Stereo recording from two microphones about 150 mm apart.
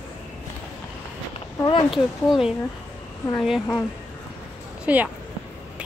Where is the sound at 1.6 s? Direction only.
30° left (ahead or behind).